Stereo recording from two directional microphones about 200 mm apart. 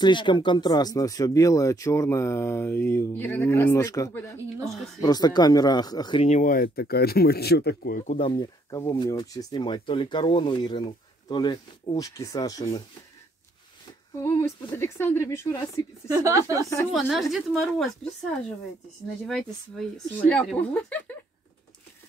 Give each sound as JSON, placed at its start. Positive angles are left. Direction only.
{"t": 0.0, "sound": "speech", "side_deg": 25}
{"t": 6.2, "sound": "speech", "side_deg": 40}
{"t": 8.2, "sound": "speech", "side_deg": 20}
{"t": 14.1, "sound": "speech", "side_deg": 15}
{"t": 16.1, "sound": "a woman's voice", "side_deg": -15}
{"t": 16.9, "sound": "speech", "side_deg": 0}
{"t": 19.2, "sound": "speech", "side_deg": 5}